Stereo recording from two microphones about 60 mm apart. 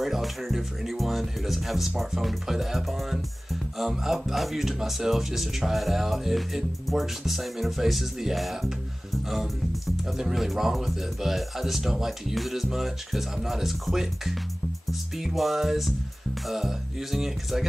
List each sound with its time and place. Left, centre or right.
0.0 s speech: centre
10.0 s speech: centre